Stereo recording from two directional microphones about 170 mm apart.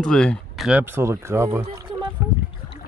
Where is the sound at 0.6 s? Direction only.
10° right (ahead or behind).